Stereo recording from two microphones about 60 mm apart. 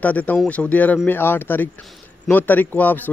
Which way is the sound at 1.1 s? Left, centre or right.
Left.